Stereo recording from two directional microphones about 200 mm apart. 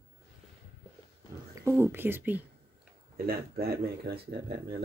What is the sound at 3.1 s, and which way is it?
Speech, 50° right (ahead or behind).